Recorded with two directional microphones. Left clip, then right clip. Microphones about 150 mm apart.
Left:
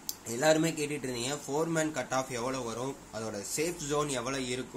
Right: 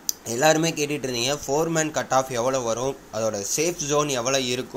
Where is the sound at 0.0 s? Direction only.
25° right (ahead or behind).